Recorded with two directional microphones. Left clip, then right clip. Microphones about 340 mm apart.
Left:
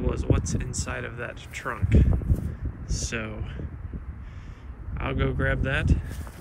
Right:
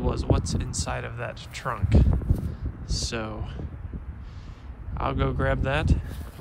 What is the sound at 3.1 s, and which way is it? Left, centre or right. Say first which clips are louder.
Speech: right 1 dB; centre.